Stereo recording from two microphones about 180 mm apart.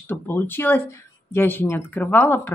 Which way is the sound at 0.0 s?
10° left (ahead or behind).